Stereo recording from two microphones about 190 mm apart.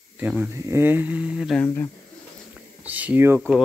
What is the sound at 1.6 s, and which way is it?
Speech, 10° left (ahead or behind).